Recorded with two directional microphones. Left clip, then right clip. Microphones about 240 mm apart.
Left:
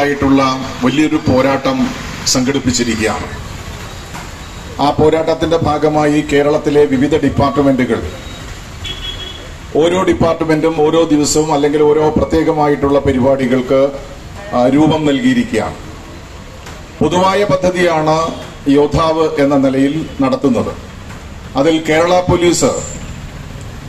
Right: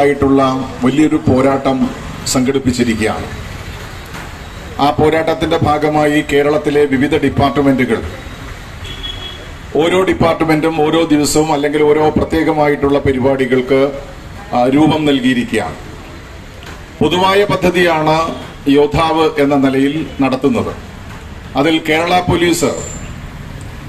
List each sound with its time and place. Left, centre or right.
0.0 s speech: right
4.7 s speech: right
9.8 s speech: right
17.0 s speech: right
21.5 s speech: right